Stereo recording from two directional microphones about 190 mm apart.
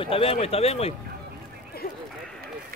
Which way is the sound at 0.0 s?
30° left (ahead or behind).